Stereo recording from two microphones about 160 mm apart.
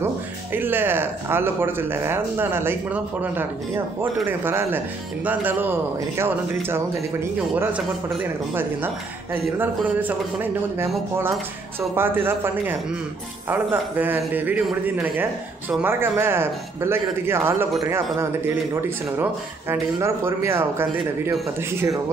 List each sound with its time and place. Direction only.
0.0 s speech: 10° right (ahead or behind)
11.9 s speech: 15° right (ahead or behind)